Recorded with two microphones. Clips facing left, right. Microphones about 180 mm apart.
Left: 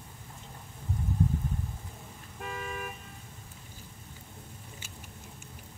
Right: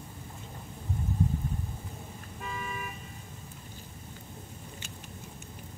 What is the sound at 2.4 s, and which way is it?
Vehicle, 65° left (ahead or behind).